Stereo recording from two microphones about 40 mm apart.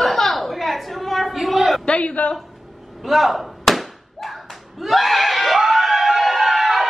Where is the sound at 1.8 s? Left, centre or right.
Left.